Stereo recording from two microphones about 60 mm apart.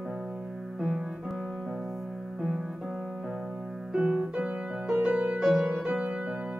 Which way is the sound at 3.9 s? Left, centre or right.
Centre.